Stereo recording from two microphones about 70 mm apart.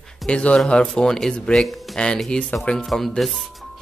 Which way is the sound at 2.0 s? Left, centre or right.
Centre.